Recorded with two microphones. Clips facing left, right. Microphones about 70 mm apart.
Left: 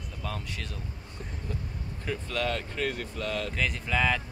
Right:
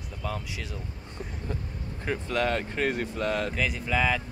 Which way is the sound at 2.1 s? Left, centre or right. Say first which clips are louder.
Right 4 dB; right.